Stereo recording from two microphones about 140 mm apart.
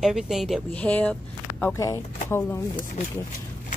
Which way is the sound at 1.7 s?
25° left (ahead or behind).